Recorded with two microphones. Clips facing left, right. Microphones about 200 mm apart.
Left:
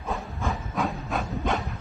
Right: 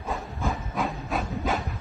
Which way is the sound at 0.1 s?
Centre (ahead or behind).